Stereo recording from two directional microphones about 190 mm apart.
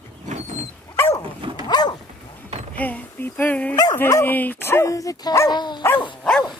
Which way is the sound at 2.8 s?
10° left (ahead or behind).